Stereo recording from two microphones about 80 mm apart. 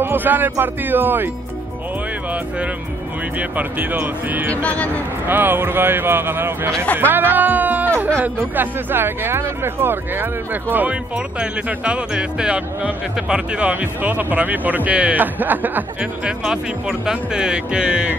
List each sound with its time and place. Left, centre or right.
0.0 s speech: right
3.3 s speech: centre
4.6 s speech: centre
5.3 s speech: right
16.3 s speech: centre